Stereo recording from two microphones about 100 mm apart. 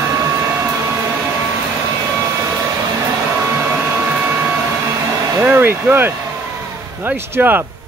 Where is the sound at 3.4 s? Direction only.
25° right (ahead or behind).